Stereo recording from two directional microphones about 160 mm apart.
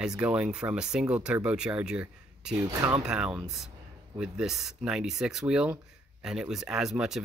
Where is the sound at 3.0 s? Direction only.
5° right (ahead or behind).